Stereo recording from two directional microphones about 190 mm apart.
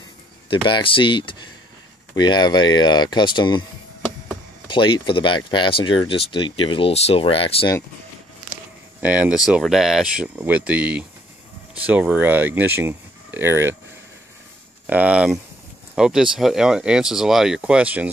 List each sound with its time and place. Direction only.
0.5 s speech: 25° left (ahead or behind)
4.6 s speech: 25° left (ahead or behind)
9.0 s speech: 5° right (ahead or behind)
14.9 s speech: 5° right (ahead or behind)